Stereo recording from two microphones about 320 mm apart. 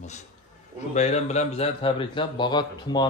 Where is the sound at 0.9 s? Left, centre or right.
Left.